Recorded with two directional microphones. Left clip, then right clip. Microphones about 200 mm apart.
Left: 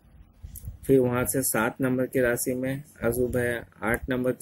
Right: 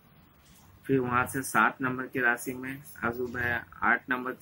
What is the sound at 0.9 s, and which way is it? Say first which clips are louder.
Speech: left 5 dB; 40° left (ahead or behind).